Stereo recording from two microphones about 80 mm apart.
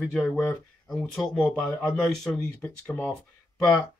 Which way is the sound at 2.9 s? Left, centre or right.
Left.